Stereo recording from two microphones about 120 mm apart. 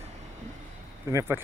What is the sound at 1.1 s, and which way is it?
Speech, 25° right (ahead or behind).